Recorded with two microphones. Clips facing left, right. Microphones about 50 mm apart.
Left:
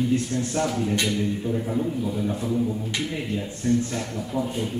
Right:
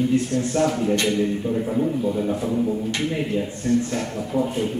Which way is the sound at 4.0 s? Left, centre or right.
Right.